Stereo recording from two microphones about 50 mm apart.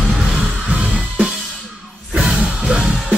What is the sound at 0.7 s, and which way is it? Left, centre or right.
Music, centre.